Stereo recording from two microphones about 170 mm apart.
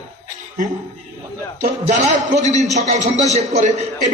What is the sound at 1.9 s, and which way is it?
Speech, 45° right (ahead or behind).